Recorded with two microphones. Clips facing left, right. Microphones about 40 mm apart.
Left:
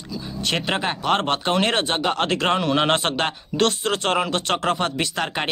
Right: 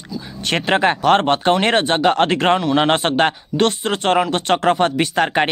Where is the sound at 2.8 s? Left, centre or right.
Centre.